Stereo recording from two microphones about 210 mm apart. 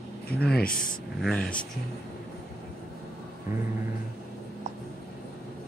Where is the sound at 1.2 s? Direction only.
5° left (ahead or behind).